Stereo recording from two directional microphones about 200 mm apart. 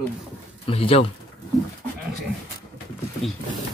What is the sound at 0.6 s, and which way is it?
Speech, 30° left (ahead or behind).